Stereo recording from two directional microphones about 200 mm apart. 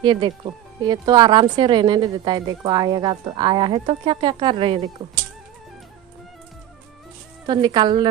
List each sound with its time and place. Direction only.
0.0 s speech: 25° right (ahead or behind)
7.4 s speech: 20° right (ahead or behind)